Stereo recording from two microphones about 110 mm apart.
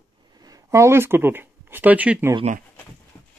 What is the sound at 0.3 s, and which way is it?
Speech, 35° right (ahead or behind).